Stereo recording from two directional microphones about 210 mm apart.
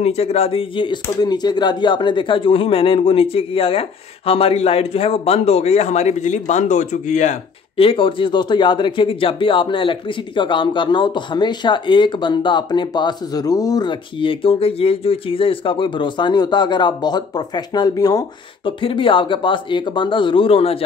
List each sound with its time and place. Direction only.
0.0 s a man's voice: 30° left (ahead or behind)